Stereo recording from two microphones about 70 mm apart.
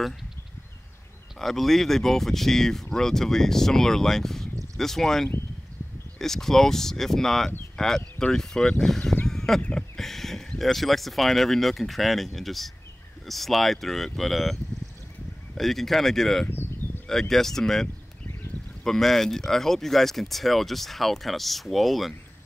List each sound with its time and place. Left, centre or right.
1.4 s speech: centre
9.3 s a sound: centre
9.6 s speech: centre
16.4 s a sound: left
17.1 s speech: centre
18.9 s speech: centre